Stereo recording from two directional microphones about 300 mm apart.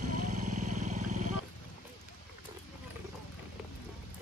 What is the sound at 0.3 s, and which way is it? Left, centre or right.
Vehicle, right.